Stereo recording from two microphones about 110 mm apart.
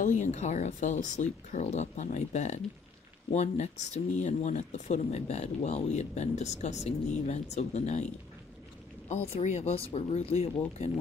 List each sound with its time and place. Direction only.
0.0 s speech: 90° left
9.1 s speech: 80° left